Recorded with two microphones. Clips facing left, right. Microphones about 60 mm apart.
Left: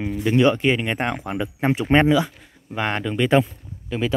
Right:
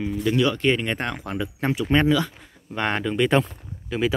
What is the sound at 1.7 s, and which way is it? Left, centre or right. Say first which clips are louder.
Speech: left 3 dB; left.